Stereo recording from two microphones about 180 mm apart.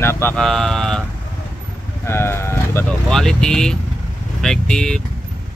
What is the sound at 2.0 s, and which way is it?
Speech, 15° left (ahead or behind).